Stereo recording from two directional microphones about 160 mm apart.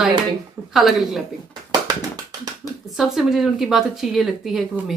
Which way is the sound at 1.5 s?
25° right (ahead or behind).